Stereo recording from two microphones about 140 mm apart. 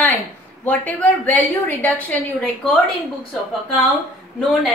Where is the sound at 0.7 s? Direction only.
10° left (ahead or behind).